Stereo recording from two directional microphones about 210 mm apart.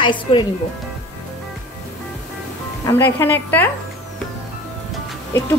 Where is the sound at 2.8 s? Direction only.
10° left (ahead or behind).